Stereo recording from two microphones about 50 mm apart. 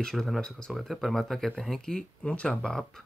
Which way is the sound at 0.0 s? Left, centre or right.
Centre.